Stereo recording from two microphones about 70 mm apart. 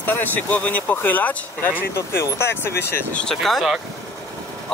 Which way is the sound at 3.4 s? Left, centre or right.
Centre.